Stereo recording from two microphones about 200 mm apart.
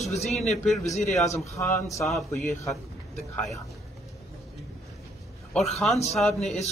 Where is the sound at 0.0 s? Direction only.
35° left (ahead or behind).